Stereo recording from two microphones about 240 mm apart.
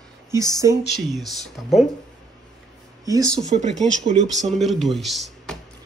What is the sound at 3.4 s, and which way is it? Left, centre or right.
Speech, right.